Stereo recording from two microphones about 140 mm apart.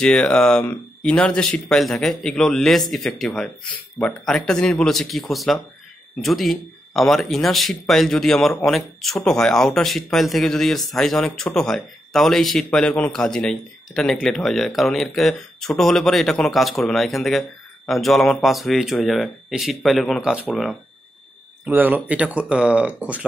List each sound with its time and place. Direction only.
0.0 s speech: 5° left (ahead or behind)
21.6 s speech: 15° right (ahead or behind)